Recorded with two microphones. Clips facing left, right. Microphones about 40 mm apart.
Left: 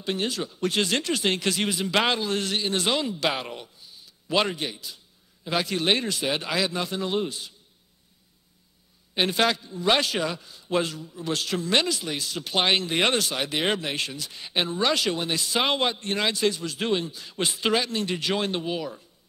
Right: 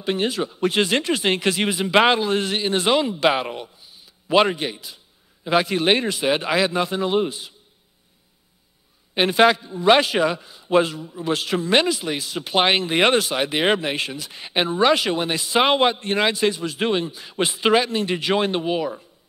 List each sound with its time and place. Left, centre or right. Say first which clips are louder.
0.0 s speech: right 5 dB; centre
9.1 s speech: right 7 dB; right